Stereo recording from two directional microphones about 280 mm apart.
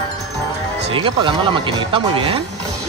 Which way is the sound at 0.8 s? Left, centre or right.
Centre.